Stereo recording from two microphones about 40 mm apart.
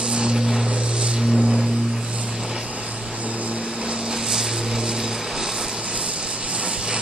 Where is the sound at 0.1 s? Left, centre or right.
Right.